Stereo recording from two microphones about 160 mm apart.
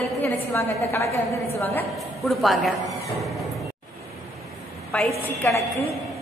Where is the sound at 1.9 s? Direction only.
Centre (ahead or behind).